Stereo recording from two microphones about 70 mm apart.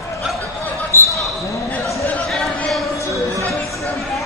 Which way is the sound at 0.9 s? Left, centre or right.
Left.